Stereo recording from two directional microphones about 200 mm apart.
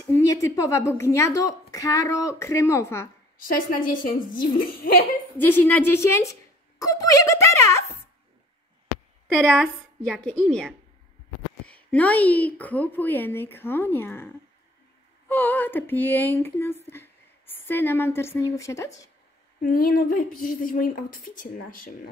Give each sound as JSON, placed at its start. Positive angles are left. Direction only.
{"t": 0.1, "sound": "a woman's voice", "side_deg": 15}
{"t": 3.3, "sound": "a woman's voice", "side_deg": 45}
{"t": 5.4, "sound": "a woman's voice", "side_deg": 10}
{"t": 6.8, "sound": "a sound", "side_deg": 15}
{"t": 9.4, "sound": "a woman's voice", "side_deg": 5}
{"t": 19.6, "sound": "a woman's voice", "side_deg": 45}